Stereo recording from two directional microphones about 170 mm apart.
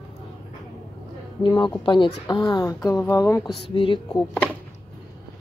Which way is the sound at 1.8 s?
30° left (ahead or behind).